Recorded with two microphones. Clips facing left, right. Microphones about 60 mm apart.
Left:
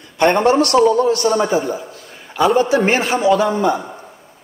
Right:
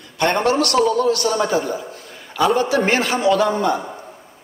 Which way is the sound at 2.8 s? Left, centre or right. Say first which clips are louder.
Left 2 dB; centre.